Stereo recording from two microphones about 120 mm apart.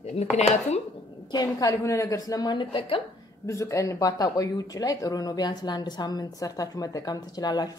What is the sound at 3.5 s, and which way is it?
Speech, 25° left (ahead or behind).